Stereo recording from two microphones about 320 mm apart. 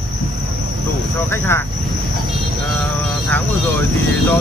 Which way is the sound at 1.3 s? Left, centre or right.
Centre.